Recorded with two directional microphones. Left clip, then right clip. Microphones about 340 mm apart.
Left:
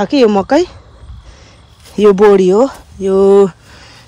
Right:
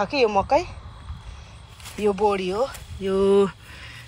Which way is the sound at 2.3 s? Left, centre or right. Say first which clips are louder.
Left 15 dB; left.